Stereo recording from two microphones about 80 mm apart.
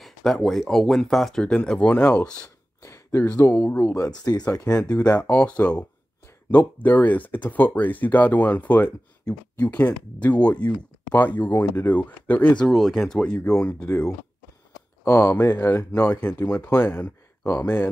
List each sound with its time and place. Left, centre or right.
0.0 s speech: centre
2.8 s a sound: left
3.3 s speech: left
4.1 s speech: left
4.9 s speech: centre
12.5 s speech: centre
15.0 s speech: left